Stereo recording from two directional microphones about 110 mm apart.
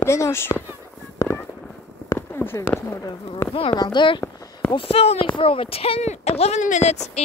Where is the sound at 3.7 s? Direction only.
45° left (ahead or behind).